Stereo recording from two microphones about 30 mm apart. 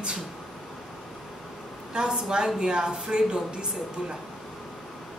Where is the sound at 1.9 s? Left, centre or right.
Right.